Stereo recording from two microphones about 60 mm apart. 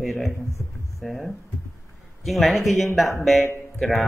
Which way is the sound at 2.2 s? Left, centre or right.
Centre.